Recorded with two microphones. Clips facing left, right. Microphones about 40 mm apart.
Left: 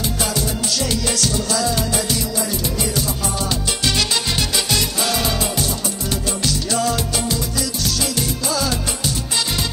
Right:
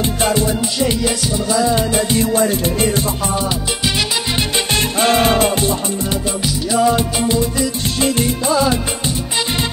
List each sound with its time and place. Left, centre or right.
0.2 s music: right
2.1 s music: right
4.7 s music: right
6.7 s music: centre